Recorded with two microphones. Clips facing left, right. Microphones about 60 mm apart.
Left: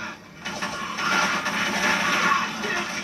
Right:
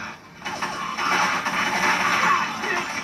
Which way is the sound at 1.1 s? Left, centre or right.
Right.